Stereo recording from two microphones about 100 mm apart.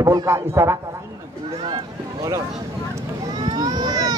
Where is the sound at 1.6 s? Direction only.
50° right (ahead or behind).